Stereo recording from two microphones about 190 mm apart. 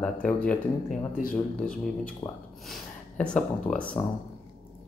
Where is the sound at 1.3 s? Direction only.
5° left (ahead or behind).